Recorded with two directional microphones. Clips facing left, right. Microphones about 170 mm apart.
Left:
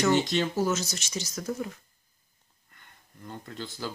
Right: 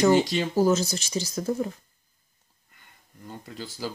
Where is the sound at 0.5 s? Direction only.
35° right (ahead or behind).